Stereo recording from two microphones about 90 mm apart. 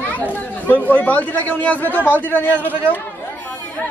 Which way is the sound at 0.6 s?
20° left (ahead or behind).